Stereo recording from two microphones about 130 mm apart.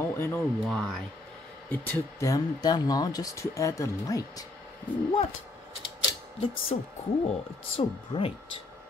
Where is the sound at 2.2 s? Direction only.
30° left (ahead or behind).